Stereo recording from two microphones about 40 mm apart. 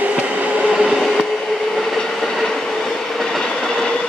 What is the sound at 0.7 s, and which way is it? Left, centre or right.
Vehicle, centre.